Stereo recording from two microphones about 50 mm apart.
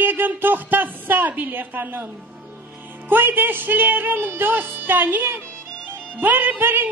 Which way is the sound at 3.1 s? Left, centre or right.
Right.